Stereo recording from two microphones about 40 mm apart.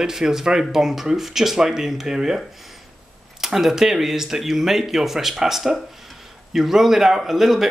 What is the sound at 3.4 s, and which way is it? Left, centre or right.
A man's voice, centre.